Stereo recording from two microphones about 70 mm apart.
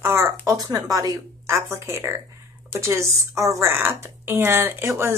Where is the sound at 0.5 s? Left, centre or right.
Right.